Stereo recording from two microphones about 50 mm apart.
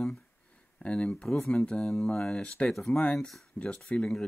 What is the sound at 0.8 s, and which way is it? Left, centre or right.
Speech, left.